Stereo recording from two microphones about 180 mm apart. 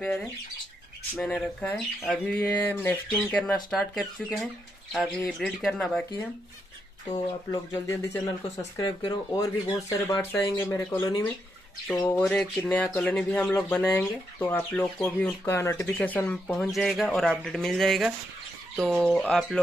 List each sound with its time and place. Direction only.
0.0 s speech: 5° left (ahead or behind)
7.1 s speech: 20° left (ahead or behind)
11.9 s speech: 5° left (ahead or behind)